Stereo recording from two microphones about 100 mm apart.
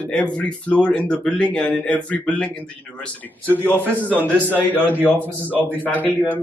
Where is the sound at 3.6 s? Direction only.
20° left (ahead or behind).